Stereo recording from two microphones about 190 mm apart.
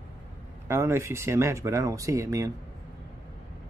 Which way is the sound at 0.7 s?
15° right (ahead or behind).